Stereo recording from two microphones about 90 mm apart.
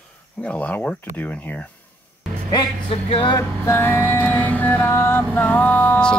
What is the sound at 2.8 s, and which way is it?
Music, 90° left.